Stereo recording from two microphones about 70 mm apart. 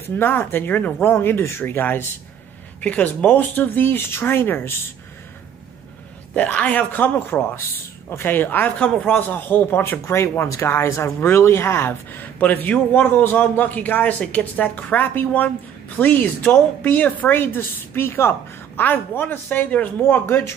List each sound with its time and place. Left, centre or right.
0.2 s speech: left
2.8 s speech: centre
6.3 s speech: left
8.9 s a man's voice: centre
9.3 s speech: left